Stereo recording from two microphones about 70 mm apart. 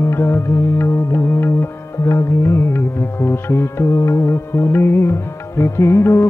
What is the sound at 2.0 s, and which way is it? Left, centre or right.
Music, left.